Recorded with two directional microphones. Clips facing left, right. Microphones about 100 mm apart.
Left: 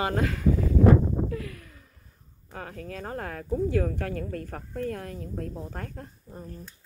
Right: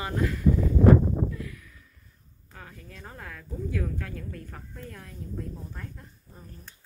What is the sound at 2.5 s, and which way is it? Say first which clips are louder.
Speech: left 9 dB; 60° left (ahead or behind).